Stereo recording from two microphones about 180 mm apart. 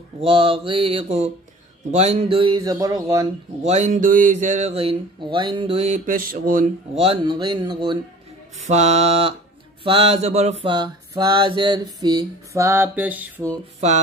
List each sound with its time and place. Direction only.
0.2 s speech: 30° right (ahead or behind)
1.9 s mantra: 35° right (ahead or behind); by 3.3 s 20° right (ahead or behind)
3.6 s speech: 40° right (ahead or behind)
7.0 s mantra: 30° right (ahead or behind)
8.6 s speech: 40° right (ahead or behind)
9.8 s mantra: 30° right (ahead or behind); by 13.5 s 10° right (ahead or behind)